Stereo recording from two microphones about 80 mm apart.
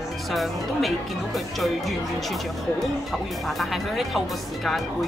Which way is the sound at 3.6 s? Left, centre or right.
Centre.